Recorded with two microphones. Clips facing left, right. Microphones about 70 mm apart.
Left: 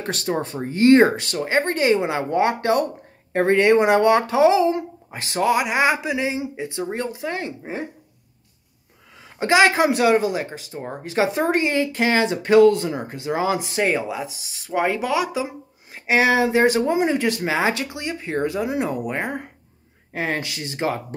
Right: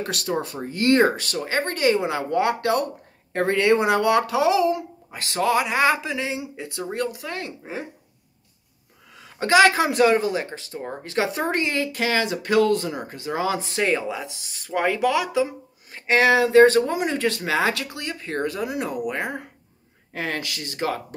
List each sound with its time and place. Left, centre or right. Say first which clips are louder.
0.0 s speech: left 2 dB; left
9.2 s speech: even; left